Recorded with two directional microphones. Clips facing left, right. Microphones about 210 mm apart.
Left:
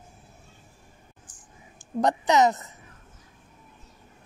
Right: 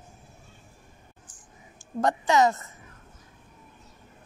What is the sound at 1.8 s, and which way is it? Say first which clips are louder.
Speech: left 2 dB; 20° left (ahead or behind).